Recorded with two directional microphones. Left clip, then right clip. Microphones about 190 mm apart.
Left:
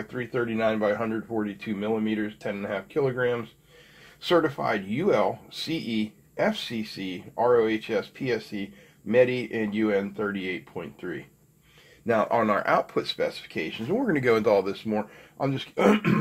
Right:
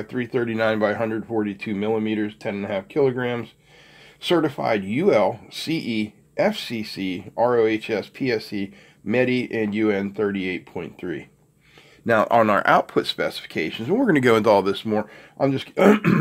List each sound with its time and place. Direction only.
0.1 s speech: 55° right (ahead or behind)